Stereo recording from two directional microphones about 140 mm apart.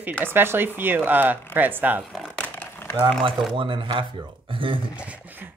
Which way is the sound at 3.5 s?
35° right (ahead or behind).